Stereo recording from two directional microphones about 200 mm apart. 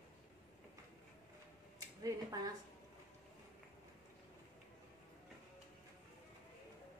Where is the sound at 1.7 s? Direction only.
20° right (ahead or behind).